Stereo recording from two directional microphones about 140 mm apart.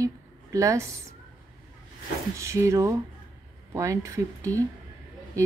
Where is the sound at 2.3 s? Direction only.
20° right (ahead or behind).